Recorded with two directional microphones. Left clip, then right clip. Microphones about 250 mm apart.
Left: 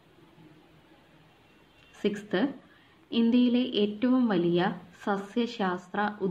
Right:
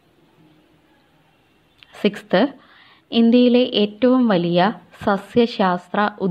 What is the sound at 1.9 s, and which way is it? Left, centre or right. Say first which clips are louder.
Speech: right 11 dB; right.